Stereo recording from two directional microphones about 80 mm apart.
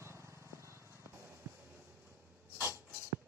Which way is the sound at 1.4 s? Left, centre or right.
Right.